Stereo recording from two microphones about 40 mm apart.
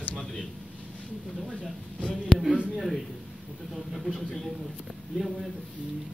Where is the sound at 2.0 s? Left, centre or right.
Left.